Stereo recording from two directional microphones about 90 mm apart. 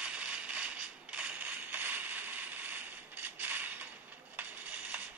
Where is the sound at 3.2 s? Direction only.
20° right (ahead or behind).